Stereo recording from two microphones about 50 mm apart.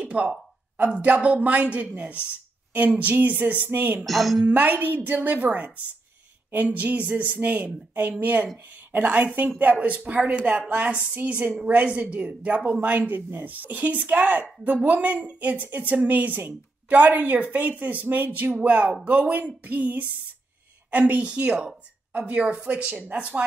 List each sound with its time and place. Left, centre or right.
0.0 s a sound: right
0.7 s a woman's voice: right
4.0 s a woman's voice: centre
4.5 s a woman's voice: right